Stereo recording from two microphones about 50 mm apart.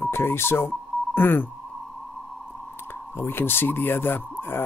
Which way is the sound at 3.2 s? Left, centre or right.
Left.